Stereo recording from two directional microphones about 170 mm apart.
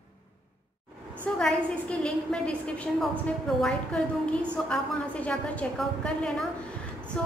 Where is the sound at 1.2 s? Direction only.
5° left (ahead or behind).